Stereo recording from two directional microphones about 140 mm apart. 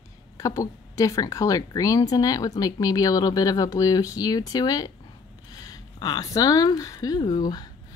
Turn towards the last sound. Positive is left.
turn(degrees=30)  # may be behind; listen again after turning